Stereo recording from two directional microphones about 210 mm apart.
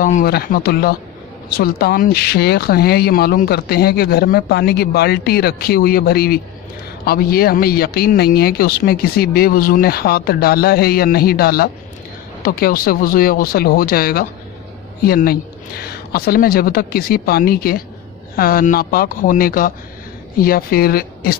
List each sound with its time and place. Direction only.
0.0 s speech: 45° left (ahead or behind)